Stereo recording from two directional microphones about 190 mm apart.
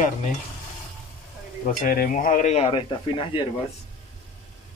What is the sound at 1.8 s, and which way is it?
Speech, 50° left (ahead or behind).